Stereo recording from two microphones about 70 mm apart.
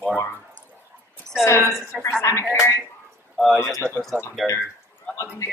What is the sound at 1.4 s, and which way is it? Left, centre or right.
Speech, left.